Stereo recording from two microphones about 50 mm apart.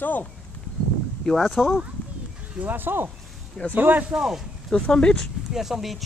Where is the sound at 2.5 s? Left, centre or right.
Right.